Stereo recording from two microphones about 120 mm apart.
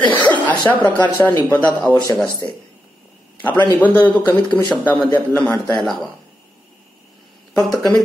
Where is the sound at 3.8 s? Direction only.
15° left (ahead or behind).